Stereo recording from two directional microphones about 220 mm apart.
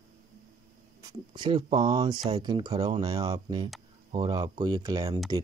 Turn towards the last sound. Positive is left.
turn(degrees=-15)  # may be behind; listen again after turning